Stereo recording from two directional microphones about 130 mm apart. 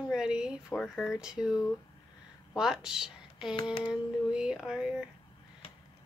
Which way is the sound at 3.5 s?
40° left (ahead or behind).